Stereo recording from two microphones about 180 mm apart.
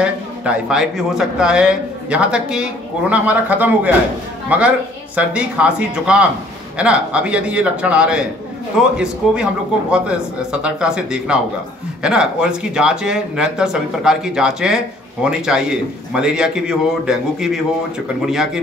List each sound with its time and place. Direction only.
0.7 s a man's voice: 5° right (ahead or behind)